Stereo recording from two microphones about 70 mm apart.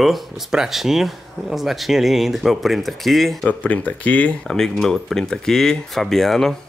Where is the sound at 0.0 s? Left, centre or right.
Centre.